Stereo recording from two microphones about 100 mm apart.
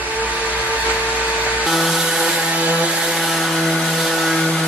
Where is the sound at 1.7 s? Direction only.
5° right (ahead or behind).